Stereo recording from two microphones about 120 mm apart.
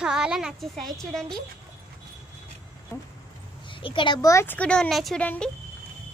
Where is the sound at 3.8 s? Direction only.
45° left (ahead or behind).